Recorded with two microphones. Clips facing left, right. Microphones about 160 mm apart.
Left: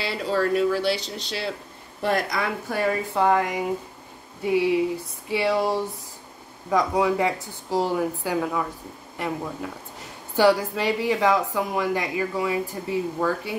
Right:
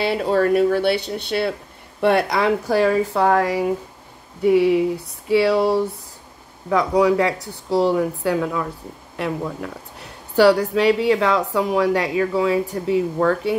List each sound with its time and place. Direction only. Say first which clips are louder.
0.0 s a woman's voice: right 6 dB; 55° right (ahead or behind)